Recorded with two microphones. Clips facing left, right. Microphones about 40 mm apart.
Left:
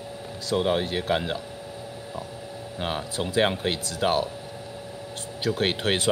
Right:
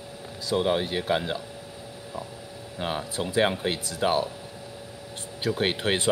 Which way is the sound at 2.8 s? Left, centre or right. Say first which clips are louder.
Even; centre.